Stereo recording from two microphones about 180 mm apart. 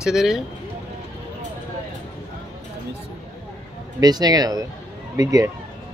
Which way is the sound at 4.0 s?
20° right (ahead or behind).